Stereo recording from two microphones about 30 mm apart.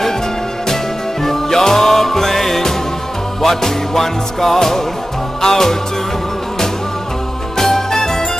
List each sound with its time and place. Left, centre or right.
1.2 s music: centre
7.5 s music: centre